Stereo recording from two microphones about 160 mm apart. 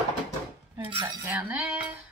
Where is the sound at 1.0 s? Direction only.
15° right (ahead or behind).